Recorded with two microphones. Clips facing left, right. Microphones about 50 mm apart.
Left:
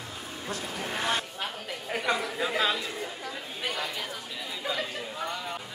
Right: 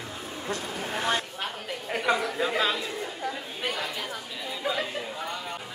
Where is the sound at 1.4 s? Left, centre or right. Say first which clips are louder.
Right 2 dB; centre.